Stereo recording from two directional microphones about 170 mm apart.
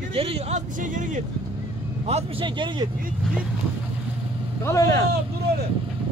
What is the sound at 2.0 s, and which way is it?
Speech, 35° right (ahead or behind).